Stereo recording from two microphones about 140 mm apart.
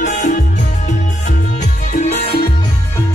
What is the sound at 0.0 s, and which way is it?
Music, 65° left (ahead or behind).